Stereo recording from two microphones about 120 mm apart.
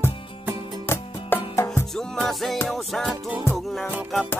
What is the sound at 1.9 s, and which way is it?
Music, 5° left (ahead or behind).